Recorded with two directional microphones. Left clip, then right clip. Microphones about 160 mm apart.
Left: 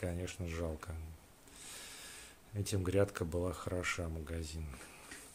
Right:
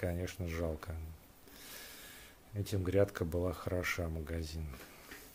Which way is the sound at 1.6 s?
5° right (ahead or behind).